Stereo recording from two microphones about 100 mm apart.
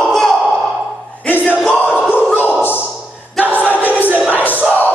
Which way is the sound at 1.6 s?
5° left (ahead or behind).